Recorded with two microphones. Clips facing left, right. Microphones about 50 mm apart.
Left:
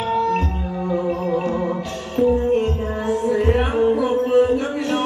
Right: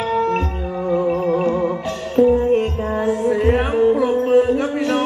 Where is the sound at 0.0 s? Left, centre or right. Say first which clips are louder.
Right 1 dB; right.